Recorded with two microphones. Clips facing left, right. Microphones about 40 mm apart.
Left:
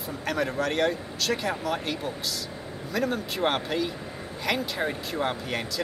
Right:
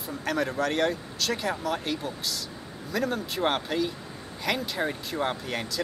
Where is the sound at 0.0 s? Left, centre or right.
Centre.